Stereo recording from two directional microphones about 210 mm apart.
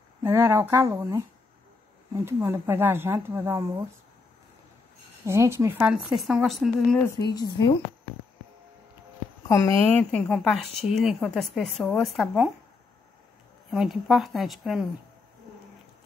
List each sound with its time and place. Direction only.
0.2 s speech: 10° right (ahead or behind)
5.2 s a woman's voice: 15° right (ahead or behind); by 7.2 s 5° left (ahead or behind)
7.3 s a woman's voice: 20° left (ahead or behind)
9.5 s a woman's voice: 10° left (ahead or behind)
13.7 s a woman's voice: centre (ahead or behind)